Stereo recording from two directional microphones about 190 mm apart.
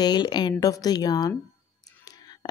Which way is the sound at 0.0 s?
20° left (ahead or behind).